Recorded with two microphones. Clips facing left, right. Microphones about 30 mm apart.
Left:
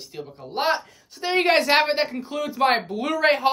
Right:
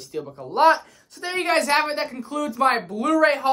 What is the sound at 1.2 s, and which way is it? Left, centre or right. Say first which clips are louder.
Speech: left 3 dB; left.